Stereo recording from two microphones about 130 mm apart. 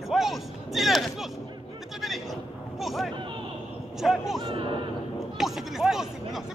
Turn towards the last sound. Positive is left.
turn(degrees=0)  # may be behind; listen again after turning